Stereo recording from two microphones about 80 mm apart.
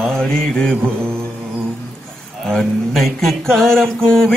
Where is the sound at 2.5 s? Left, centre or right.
Centre.